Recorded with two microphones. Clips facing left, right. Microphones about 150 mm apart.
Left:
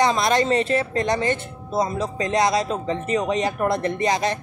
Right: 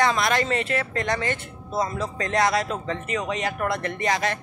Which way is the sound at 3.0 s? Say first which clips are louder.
Left 7 dB; 30° left (ahead or behind).